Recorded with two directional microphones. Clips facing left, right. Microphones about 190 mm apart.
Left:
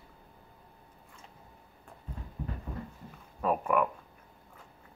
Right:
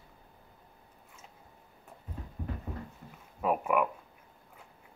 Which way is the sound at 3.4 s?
10° right (ahead or behind).